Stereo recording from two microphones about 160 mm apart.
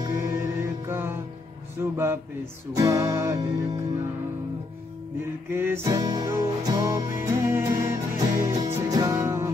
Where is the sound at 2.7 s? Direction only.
25° right (ahead or behind).